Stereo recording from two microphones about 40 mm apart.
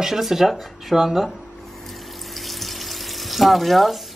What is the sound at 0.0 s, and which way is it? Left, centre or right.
Speech, centre.